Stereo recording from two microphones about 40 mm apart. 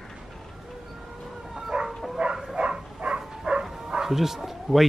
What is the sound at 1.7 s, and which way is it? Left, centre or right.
Bow-wow, centre.